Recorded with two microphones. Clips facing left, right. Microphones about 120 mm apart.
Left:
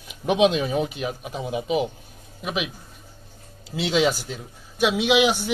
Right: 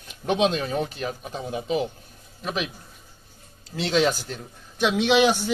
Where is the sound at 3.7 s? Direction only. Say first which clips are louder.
Left 1 dB; 5° left (ahead or behind).